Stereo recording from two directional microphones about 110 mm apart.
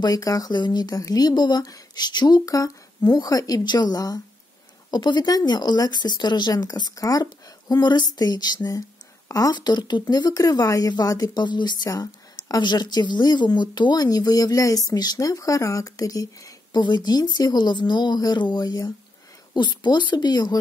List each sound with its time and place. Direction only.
0.0 s speech: 35° left (ahead or behind)